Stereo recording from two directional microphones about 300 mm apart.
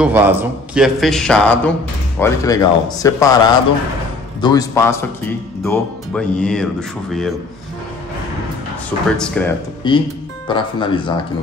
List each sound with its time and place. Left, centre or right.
0.0 s speech: centre
9.1 s speech: centre
9.8 s speech: centre